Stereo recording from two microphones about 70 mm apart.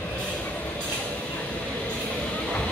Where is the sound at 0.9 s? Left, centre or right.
Centre.